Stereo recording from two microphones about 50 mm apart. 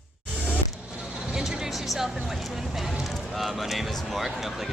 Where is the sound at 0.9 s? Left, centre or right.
Centre.